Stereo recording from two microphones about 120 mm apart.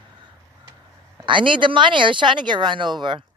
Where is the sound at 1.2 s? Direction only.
45° right (ahead or behind).